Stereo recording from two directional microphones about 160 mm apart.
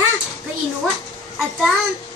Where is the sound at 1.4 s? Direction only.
Centre (ahead or behind).